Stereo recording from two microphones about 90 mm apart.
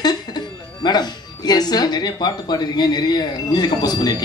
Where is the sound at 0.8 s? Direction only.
50° left (ahead or behind).